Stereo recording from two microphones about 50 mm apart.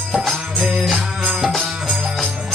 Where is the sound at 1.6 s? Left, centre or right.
Right.